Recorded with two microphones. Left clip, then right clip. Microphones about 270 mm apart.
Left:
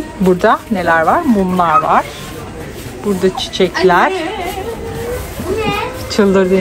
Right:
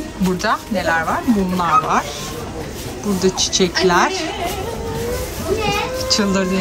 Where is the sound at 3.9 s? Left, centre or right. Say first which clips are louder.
Left 5 dB; centre.